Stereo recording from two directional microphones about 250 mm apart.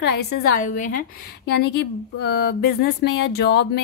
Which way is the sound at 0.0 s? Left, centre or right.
Left.